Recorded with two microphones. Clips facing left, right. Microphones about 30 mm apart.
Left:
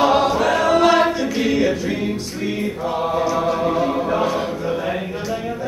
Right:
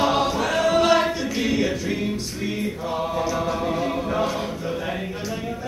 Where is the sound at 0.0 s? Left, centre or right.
Centre.